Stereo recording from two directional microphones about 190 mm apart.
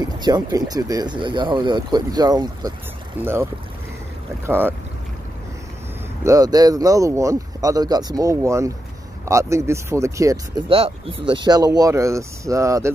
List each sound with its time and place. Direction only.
0.2 s speech: 20° right (ahead or behind)
3.2 s speech: 10° right (ahead or behind)
4.5 s speech: 10° right (ahead or behind)
6.2 s speech: 20° right (ahead or behind)
10.7 s speech: 30° right (ahead or behind)